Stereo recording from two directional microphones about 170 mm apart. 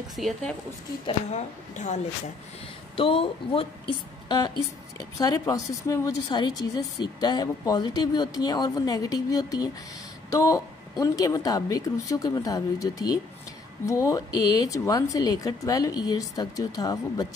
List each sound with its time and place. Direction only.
0.1 s speech: 5° left (ahead or behind)
1.0 s a woman's voice: 40° left (ahead or behind)
3.0 s speech: 35° left (ahead or behind)
4.9 s speech: 20° left (ahead or behind)